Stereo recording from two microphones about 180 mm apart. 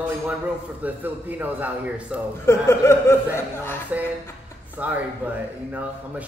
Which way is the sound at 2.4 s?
15° left (ahead or behind).